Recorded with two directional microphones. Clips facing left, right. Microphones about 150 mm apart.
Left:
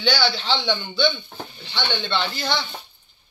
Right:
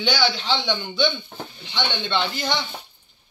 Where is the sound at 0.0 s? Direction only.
10° right (ahead or behind).